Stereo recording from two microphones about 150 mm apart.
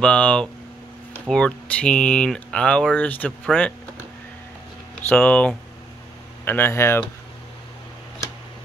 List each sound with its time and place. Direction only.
0.0 s speech: 5° left (ahead or behind)
5.1 s speech: 5° left (ahead or behind)